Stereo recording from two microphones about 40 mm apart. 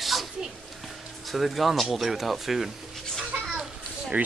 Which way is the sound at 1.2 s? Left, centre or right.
Centre.